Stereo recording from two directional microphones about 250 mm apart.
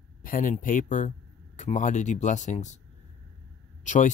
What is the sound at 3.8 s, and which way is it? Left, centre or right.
Speech, left.